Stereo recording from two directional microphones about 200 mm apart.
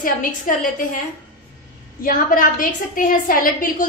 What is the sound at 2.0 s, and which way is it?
A woman's voice, 45° left (ahead or behind).